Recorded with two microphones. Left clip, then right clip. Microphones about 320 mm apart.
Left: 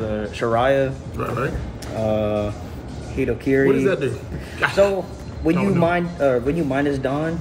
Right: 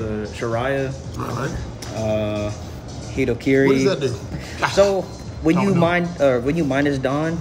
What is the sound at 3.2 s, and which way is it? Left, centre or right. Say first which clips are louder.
A man's voice: right 1 dB; centre.